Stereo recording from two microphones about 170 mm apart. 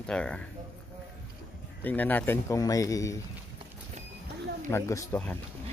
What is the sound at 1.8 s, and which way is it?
Speech, 10° left (ahead or behind).